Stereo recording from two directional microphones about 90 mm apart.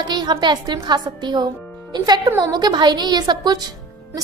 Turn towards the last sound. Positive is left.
turn(degrees=-45)  # may be behind; listen again after turning